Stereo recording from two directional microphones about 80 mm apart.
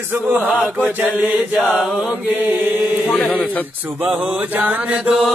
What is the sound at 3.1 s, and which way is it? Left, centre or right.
Speech, centre.